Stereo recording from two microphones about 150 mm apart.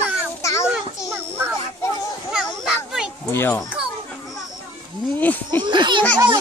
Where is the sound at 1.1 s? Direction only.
15° right (ahead or behind).